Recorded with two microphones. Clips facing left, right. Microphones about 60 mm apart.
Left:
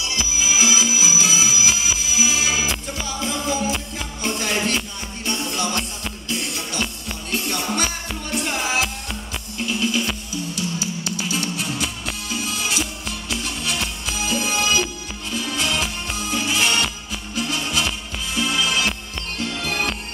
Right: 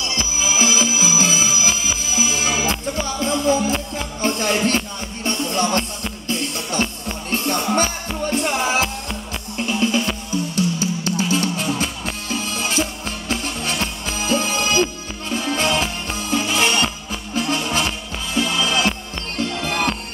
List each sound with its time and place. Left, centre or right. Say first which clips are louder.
0.4 s music: right 2 dB; right